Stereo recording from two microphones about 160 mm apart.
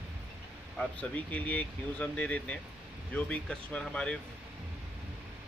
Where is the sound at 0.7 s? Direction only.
10° left (ahead or behind).